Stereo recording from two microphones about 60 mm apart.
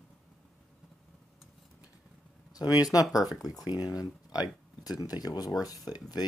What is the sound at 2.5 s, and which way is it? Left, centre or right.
Speech, left.